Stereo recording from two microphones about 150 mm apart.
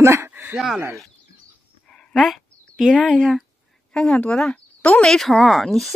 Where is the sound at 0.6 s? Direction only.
Centre (ahead or behind).